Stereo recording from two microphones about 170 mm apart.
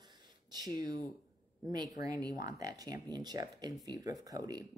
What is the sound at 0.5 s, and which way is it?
Speech, 25° right (ahead or behind).